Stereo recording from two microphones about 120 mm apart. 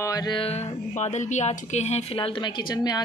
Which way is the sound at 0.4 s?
60° left (ahead or behind).